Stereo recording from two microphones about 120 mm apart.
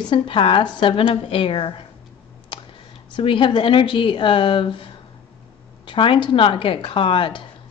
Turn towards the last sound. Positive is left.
turn(degrees=45)  # may be behind; listen again after turning